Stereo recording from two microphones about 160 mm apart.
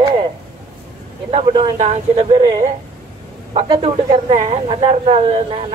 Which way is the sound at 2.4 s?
25° right (ahead or behind).